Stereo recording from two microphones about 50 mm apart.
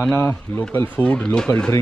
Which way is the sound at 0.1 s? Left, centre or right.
Left.